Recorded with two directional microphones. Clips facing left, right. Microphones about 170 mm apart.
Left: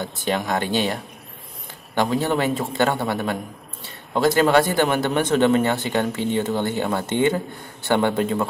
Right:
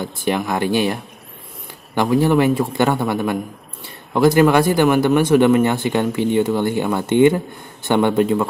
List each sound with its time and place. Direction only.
0.0 s speech: 10° right (ahead or behind)
2.4 s speech: 15° right (ahead or behind)